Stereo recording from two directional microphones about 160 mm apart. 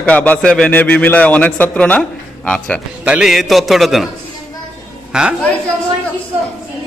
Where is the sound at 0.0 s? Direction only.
10° left (ahead or behind).